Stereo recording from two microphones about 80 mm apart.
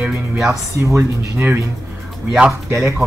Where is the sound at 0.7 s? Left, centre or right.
Right.